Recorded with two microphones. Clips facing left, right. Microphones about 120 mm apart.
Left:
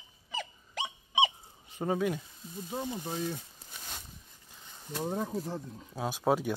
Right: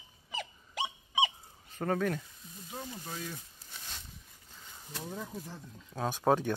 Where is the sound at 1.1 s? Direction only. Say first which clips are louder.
Left 5 dB; 20° left (ahead or behind).